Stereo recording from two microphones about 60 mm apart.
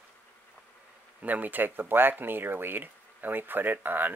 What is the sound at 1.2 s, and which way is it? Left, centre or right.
Speech, right.